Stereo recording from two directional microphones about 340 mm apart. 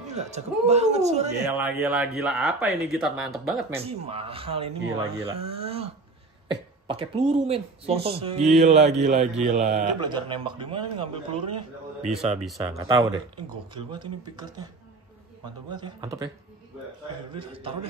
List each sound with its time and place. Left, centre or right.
0.0 s a man's voice: centre
1.6 s speech: centre
3.8 s speech: centre
15.7 s speech: centre
17.4 s speech: centre